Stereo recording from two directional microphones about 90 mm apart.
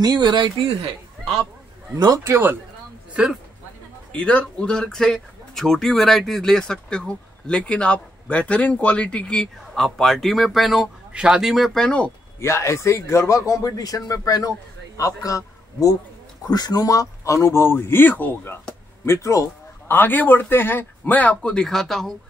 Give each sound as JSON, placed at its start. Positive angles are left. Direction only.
{"t": 0.0, "sound": "speech", "side_deg": -55}
{"t": 2.0, "sound": "a man's voice", "side_deg": -50}
{"t": 2.2, "sound": "speech", "side_deg": -25}
{"t": 3.1, "sound": "a sound", "side_deg": -10}
{"t": 4.1, "sound": "speech", "side_deg": 15}
{"t": 11.8, "sound": "speech", "side_deg": 10}
{"t": 12.4, "sound": "a man's voice", "side_deg": 30}
{"t": 19.0, "sound": "a man's voice", "side_deg": 30}
{"t": 19.9, "sound": "speech", "side_deg": 20}